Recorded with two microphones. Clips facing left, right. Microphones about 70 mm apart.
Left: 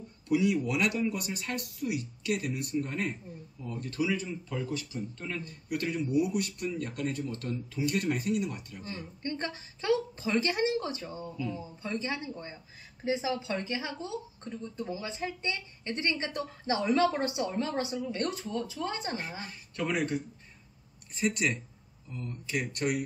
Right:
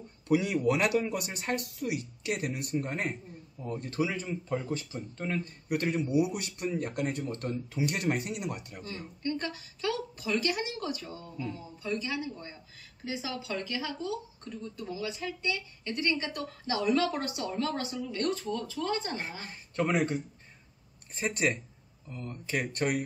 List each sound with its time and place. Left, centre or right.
0.3 s speech: right
8.8 s speech: left
19.4 s speech: right
21.2 s speech: right